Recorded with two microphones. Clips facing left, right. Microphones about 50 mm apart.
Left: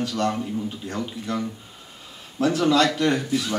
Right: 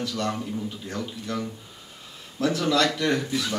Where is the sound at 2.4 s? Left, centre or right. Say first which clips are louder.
Left 3 dB; left.